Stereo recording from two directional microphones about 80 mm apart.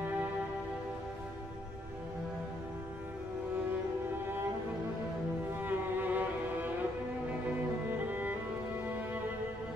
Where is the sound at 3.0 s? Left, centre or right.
Right.